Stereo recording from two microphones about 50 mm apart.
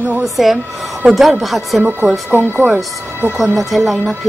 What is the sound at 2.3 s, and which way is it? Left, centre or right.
Speech, right.